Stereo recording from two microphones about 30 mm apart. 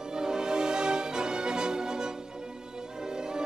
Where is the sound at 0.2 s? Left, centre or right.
Right.